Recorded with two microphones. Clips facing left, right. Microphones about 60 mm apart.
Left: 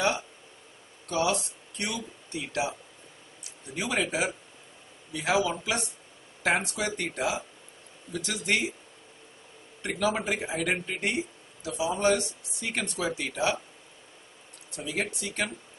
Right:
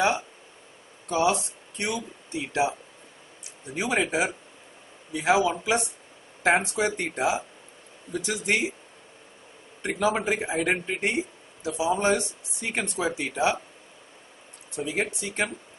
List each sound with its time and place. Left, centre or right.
1.0 s speech: right
3.7 s speech: right
9.8 s speech: right
14.8 s speech: right